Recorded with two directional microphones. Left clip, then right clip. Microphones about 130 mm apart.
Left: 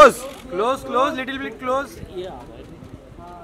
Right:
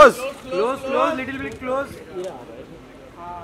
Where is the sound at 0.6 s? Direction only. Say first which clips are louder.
Left 1 dB; 35° left (ahead or behind).